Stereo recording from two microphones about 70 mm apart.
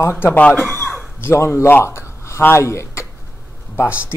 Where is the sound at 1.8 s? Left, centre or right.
Left.